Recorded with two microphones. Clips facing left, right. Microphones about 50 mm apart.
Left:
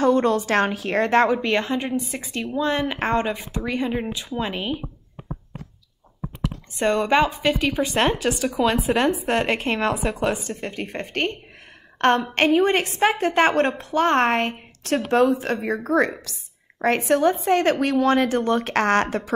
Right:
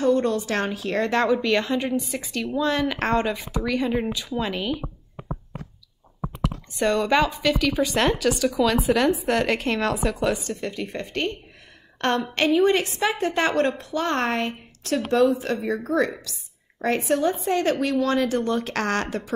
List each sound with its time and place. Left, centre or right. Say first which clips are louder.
0.0 s a woman's voice: left 2 dB; left
1.4 s speech: even; left
3.8 s speech: even; centre
4.3 s speech: even; centre
6.8 s speech: left 1 dB; left
9.9 s a woman's voice: even; centre
10.2 s speech: even; left
10.7 s a woman's voice: left 1 dB; left
12.6 s a woman's voice: left 1 dB; left